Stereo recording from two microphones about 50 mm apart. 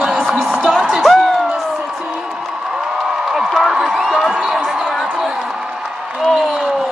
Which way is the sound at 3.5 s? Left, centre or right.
Centre.